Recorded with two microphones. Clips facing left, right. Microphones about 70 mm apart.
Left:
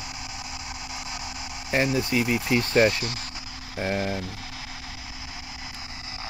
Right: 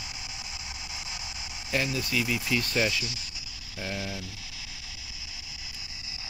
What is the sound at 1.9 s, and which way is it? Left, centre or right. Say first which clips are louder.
Cricket: left 6 dB; left.